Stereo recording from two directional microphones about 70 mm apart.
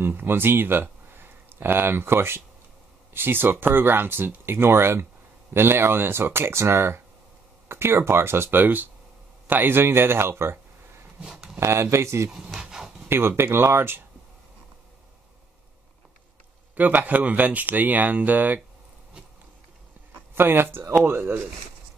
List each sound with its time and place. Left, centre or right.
0.0 s speech: right
11.1 s a sound: centre
11.6 s speech: right
12.5 s dog: centre
13.4 s speech: right
16.7 s speech: right
20.3 s speech: right